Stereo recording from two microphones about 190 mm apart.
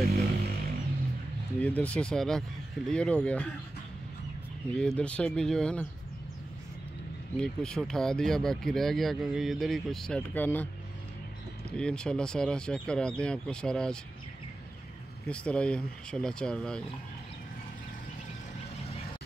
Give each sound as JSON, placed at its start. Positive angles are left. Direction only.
{"t": 0.0, "sound": "a sound", "side_deg": -55}
{"t": 1.6, "sound": "speech", "side_deg": 5}
{"t": 4.7, "sound": "speech", "side_deg": 5}
{"t": 7.3, "sound": "speech", "side_deg": 5}
{"t": 11.7, "sound": "speech", "side_deg": 5}
{"t": 15.2, "sound": "speech", "side_deg": 5}